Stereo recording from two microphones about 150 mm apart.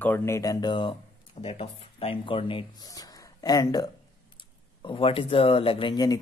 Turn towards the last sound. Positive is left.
turn(degrees=25)  # may be behind; listen again after turning